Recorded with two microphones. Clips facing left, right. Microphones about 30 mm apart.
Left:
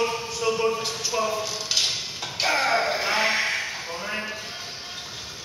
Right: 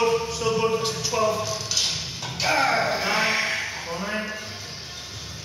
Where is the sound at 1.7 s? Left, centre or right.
Left.